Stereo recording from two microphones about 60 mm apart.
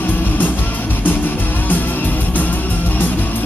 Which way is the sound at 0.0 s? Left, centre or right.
Left.